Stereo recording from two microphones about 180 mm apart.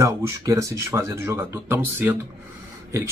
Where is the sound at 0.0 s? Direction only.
15° right (ahead or behind).